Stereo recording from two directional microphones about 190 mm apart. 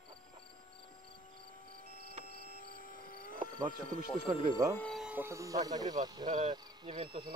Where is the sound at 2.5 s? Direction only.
50° left (ahead or behind).